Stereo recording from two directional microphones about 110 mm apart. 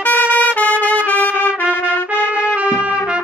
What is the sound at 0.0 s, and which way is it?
Trumpet, 15° left (ahead or behind).